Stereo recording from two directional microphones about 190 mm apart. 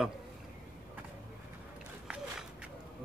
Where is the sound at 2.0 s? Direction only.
5° right (ahead or behind).